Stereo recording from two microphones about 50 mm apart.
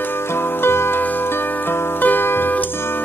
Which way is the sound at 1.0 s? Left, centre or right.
Left.